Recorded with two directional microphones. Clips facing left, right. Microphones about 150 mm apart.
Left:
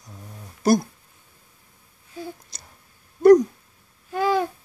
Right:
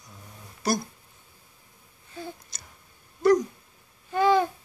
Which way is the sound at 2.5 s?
35° left (ahead or behind).